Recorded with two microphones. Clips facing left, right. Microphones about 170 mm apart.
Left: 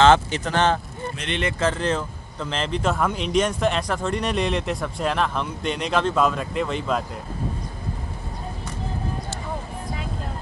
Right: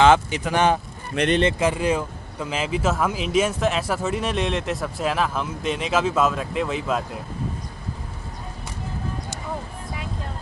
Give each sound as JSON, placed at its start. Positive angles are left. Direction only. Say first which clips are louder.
{"t": 0.0, "sound": "speech", "louder": "even", "side_deg": -10}
{"t": 1.2, "sound": "speech", "louder": "right 13 dB", "side_deg": -70}
{"t": 1.6, "sound": "speech", "louder": "right 2 dB", "side_deg": -10}